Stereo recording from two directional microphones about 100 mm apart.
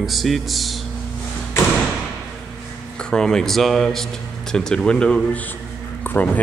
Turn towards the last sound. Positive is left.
turn(degrees=15)  # may be behind; listen again after turning